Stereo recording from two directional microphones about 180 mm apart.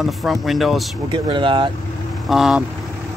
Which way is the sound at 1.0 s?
25° right (ahead or behind).